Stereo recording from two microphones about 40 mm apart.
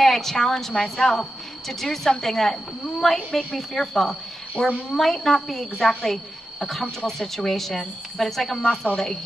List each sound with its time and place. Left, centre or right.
0.0 s a woman's voice: centre
4.6 s speech: left
4.9 s a woman's voice: centre